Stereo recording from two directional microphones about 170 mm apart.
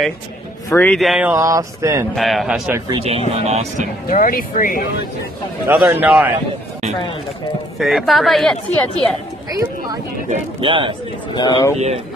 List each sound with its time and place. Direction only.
0.7 s a man's voice: 10° left (ahead or behind)
0.9 s a woman's voice: centre (ahead or behind)
1.3 s a sound: 20° right (ahead or behind)
2.1 s a woman's voice: centre (ahead or behind)
3.0 s speech: 35° right (ahead or behind)
4.1 s speech: 55° left (ahead or behind)
5.8 s a sound: 10° right (ahead or behind)
7.8 s a woman's voice: centre (ahead or behind)
9.5 s speech: 20° right (ahead or behind)
10.6 s speech: 30° right (ahead or behind)
11.3 s speech: 25° left (ahead or behind)